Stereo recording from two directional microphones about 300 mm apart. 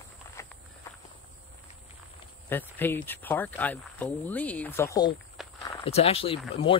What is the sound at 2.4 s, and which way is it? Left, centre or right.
Speech, centre.